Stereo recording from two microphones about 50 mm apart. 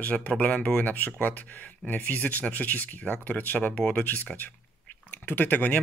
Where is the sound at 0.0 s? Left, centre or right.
Left.